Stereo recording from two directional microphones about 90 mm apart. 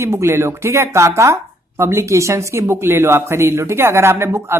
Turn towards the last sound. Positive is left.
turn(degrees=-25)  # may be behind; listen again after turning